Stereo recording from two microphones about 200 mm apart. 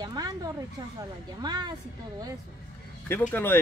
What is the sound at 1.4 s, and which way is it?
Speech, 20° right (ahead or behind).